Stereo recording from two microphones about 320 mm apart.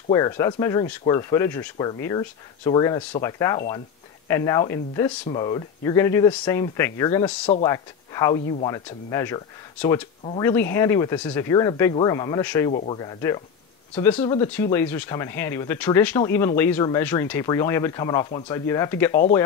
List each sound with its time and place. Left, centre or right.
0.1 s speech: centre